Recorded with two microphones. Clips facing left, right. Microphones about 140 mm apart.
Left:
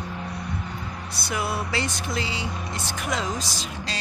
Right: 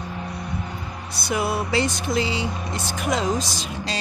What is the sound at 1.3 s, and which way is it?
Speech, 20° right (ahead or behind).